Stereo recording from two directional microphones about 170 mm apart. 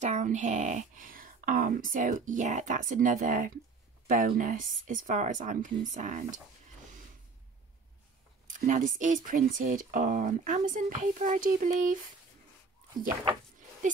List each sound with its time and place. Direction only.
0.0 s speech: 45° right (ahead or behind)
8.5 s speech: 50° right (ahead or behind)